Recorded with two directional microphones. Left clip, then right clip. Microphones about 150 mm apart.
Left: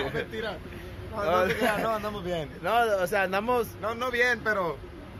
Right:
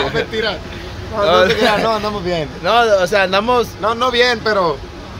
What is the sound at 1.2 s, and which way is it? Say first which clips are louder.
Speech: right 13 dB; 5° left (ahead or behind).